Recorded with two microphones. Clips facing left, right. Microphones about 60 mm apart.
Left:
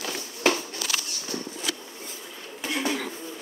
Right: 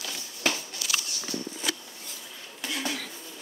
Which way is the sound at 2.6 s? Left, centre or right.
Left.